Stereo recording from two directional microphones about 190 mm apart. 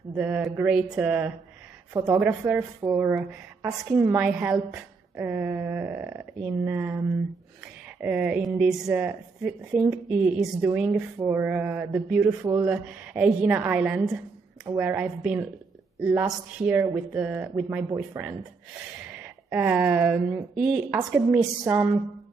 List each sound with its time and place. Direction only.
0.1 s speech: 10° right (ahead or behind)
8.0 s a woman's voice: 10° right (ahead or behind)